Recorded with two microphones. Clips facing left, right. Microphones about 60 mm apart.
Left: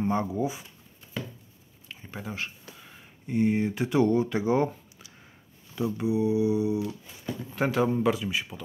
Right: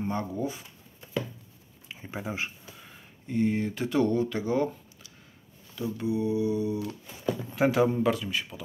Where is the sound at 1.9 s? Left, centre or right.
Centre.